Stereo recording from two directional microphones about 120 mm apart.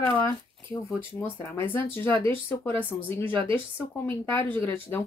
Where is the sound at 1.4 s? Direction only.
15° left (ahead or behind).